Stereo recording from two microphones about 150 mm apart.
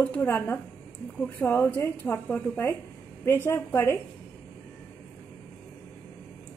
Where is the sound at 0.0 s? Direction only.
10° left (ahead or behind).